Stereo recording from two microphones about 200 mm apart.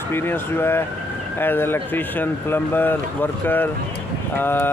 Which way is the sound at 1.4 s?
10° left (ahead or behind).